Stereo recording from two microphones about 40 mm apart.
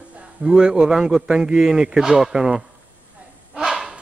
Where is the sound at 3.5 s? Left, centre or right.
Right.